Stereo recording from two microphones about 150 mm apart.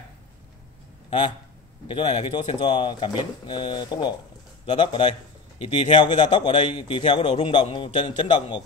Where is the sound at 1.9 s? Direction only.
40° left (ahead or behind).